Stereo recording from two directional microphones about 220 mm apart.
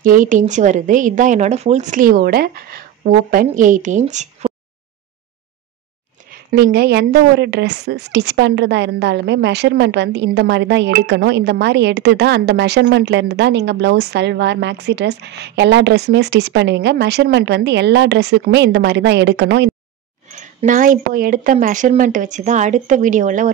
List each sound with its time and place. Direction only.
0.0 s speech: 35° right (ahead or behind)
6.5 s a woman's voice: 45° right (ahead or behind)
20.3 s speech: 35° right (ahead or behind)